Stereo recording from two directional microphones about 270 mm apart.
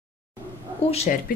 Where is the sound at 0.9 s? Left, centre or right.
Left.